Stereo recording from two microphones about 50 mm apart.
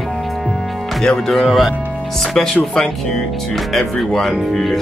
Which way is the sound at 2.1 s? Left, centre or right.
Centre.